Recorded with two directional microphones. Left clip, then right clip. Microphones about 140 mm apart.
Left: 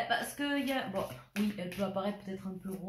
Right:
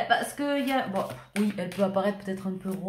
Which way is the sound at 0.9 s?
15° right (ahead or behind).